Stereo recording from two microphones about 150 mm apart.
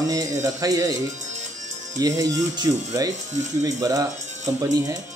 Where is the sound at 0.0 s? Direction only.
25° right (ahead or behind).